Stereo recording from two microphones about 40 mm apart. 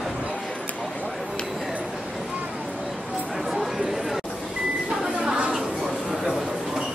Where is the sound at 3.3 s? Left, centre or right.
Centre.